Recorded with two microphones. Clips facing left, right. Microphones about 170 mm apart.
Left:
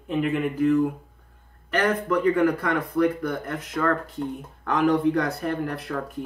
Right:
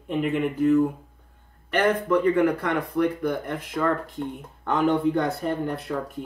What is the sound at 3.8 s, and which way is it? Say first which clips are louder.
Speech: left 1 dB; 10° right (ahead or behind).